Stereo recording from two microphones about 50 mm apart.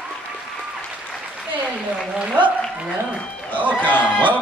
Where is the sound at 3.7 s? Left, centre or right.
Left.